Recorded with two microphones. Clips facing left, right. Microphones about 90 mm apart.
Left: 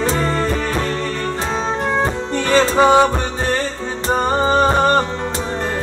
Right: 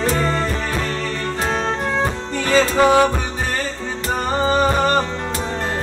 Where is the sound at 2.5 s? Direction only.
25° left (ahead or behind).